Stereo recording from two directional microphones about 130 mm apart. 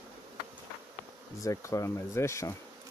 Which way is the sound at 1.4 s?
25° left (ahead or behind).